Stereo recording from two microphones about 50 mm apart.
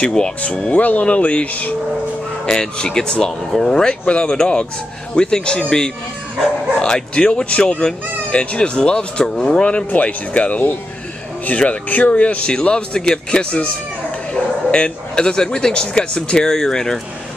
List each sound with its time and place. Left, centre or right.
0.0 s speech: centre
0.7 s speech: left
2.4 s speech: centre